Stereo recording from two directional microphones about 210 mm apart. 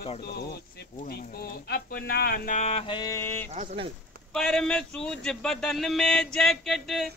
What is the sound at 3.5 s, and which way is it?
Speech, 35° right (ahead or behind).